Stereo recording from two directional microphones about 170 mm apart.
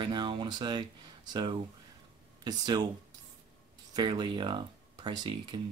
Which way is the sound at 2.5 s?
25° right (ahead or behind).